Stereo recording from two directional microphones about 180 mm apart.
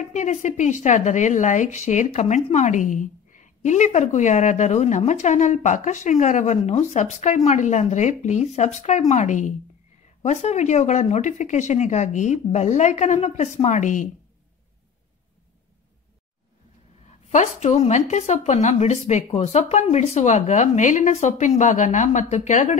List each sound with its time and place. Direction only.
0.0 s a woman's voice: 40° left (ahead or behind)
17.3 s a woman's voice: 40° left (ahead or behind)